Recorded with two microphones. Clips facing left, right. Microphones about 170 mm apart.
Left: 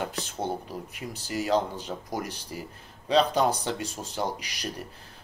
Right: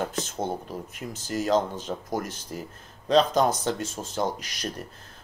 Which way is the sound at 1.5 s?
15° left (ahead or behind).